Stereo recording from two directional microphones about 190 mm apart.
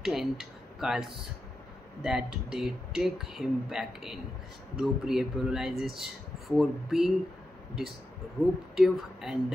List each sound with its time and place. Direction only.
0.0 s speech: centre (ahead or behind)
8.7 s speech: centre (ahead or behind)